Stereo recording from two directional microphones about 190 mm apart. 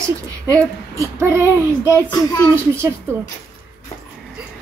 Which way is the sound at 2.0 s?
15° left (ahead or behind).